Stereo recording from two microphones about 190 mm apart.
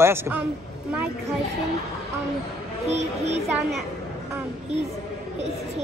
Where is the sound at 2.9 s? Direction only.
35° right (ahead or behind).